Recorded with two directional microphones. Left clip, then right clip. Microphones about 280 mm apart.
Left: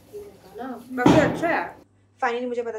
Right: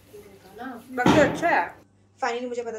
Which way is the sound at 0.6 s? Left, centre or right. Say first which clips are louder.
Left 3 dB; left.